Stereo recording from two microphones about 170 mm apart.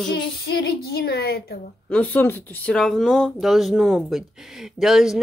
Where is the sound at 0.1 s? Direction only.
70° left (ahead or behind).